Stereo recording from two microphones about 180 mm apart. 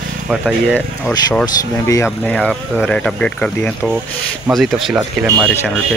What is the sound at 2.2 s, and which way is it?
Speech, centre (ahead or behind).